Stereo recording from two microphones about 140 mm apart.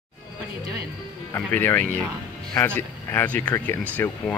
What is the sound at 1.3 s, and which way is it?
Speech, 15° left (ahead or behind).